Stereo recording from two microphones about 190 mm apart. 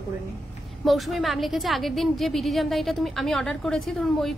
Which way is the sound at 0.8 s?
Centre (ahead or behind).